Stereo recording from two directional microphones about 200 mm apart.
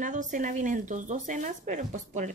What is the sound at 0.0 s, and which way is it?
A woman's voice, 40° right (ahead or behind).